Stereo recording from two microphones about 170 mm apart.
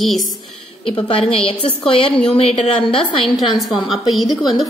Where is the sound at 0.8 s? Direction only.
30° left (ahead or behind).